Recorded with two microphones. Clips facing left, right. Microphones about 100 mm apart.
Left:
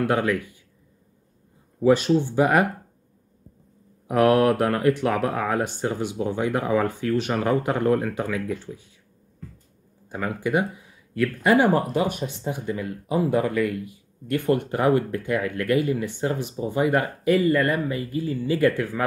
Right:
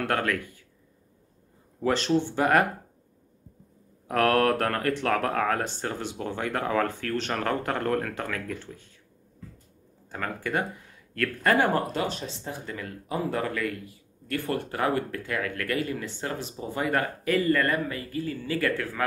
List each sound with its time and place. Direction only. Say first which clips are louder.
0.0 s speech: left 5 dB; 10° left (ahead or behind)
1.8 s speech: left 6 dB; 10° left (ahead or behind)
4.1 s speech: left 4 dB; 15° left (ahead or behind)
10.0 s speech: left 5 dB; 10° left (ahead or behind)